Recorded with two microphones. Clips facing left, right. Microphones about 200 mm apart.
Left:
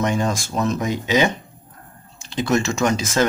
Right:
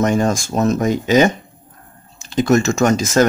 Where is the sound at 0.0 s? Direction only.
45° right (ahead or behind).